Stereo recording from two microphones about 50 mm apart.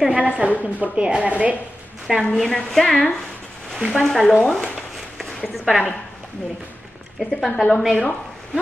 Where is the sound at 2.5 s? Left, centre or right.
Centre.